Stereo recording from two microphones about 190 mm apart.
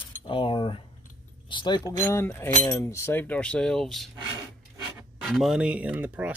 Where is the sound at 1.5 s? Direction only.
25° left (ahead or behind).